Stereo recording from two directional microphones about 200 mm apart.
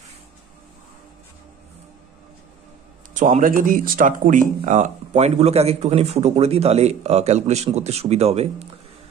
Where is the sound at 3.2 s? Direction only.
40° right (ahead or behind).